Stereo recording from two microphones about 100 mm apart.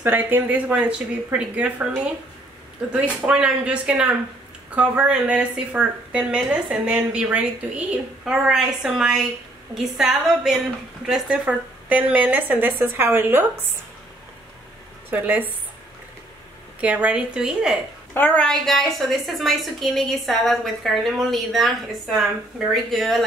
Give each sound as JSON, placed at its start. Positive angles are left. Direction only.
{"t": 0.0, "sound": "a woman's voice", "side_deg": -20}
{"t": 3.2, "sound": "a woman's voice", "side_deg": -10}
{"t": 15.0, "sound": "a woman's voice", "side_deg": -20}
{"t": 16.8, "sound": "a woman's voice", "side_deg": -15}
{"t": 18.1, "sound": "a woman's voice", "side_deg": 15}